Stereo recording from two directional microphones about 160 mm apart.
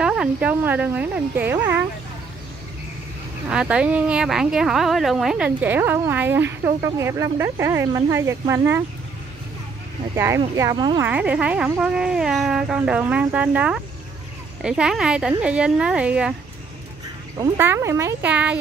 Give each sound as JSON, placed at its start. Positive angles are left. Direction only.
{"t": 0.0, "sound": "speech", "side_deg": -5}
{"t": 3.4, "sound": "speech", "side_deg": -5}
{"t": 10.1, "sound": "speech", "side_deg": -15}
{"t": 11.0, "sound": "speech", "side_deg": -10}
{"t": 17.6, "sound": "speech", "side_deg": -15}